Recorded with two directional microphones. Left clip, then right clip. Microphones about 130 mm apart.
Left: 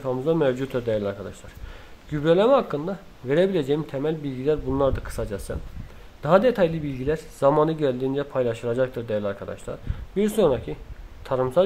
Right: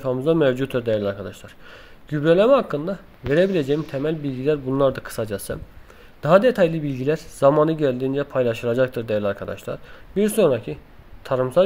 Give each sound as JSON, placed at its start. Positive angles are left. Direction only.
{"t": 0.0, "sound": "speech", "side_deg": -25}
{"t": 10.2, "sound": "speech", "side_deg": -25}